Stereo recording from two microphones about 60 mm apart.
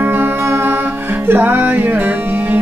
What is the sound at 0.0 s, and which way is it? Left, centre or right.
Music, right.